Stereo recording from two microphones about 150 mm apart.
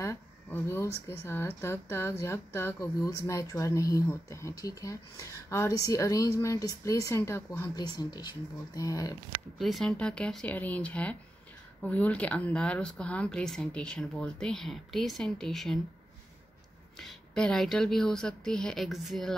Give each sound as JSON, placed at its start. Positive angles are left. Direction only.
{"t": 0.0, "sound": "speech", "side_deg": 15}
{"t": 9.6, "sound": "speech", "side_deg": 0}
{"t": 17.0, "sound": "speech", "side_deg": 5}